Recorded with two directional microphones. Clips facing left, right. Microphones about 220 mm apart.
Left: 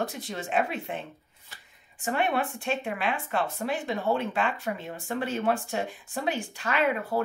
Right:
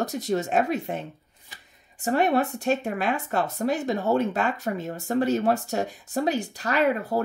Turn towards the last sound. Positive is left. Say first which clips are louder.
# right 3 dB
turn(degrees=-40)  # may be behind; listen again after turning